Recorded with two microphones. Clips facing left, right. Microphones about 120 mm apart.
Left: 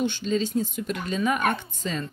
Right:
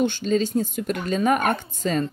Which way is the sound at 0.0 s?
45° right (ahead or behind).